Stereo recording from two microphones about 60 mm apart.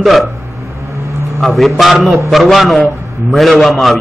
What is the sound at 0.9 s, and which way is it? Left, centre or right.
Vehicle, right.